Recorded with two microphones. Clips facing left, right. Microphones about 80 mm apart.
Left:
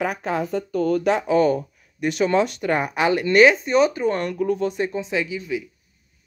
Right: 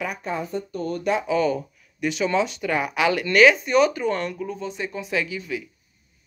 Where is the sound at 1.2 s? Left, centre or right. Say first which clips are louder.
Left 4 dB; left.